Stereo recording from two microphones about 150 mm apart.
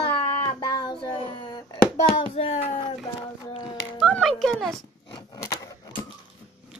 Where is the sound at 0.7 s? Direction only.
30° left (ahead or behind).